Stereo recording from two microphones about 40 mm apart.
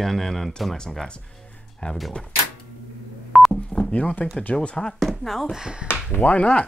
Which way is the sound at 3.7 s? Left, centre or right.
Left.